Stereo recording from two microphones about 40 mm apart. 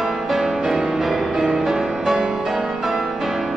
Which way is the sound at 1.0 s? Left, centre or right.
Centre.